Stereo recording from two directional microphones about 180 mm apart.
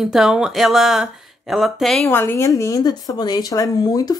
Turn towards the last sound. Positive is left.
turn(degrees=20)  # may be behind; listen again after turning